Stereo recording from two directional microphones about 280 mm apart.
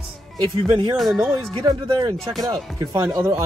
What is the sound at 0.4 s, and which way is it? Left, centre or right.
Speech, centre.